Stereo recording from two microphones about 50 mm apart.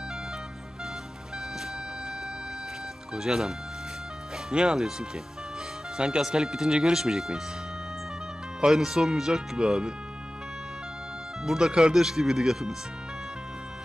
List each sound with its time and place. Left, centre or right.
3.2 s speech: centre
8.5 s speech: centre
11.4 s speech: centre